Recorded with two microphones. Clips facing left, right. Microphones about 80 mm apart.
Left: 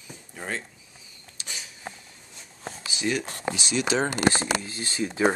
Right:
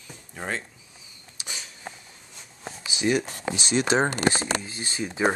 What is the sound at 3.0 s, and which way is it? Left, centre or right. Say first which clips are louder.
Speech: right 4 dB; centre.